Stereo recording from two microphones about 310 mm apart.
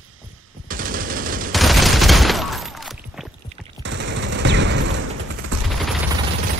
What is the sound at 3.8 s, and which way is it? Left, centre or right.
Machine gun, right.